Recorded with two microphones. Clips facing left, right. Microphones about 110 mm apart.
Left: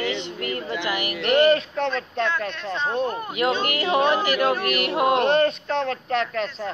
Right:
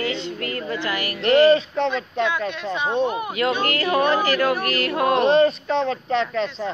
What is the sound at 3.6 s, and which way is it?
Speech, 20° left (ahead or behind).